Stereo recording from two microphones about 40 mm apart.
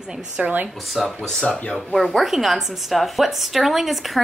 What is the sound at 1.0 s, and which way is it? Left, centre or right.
A woman's voice, centre.